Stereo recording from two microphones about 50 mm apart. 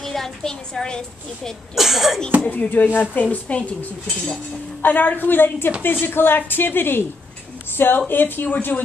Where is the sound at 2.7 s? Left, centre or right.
Left.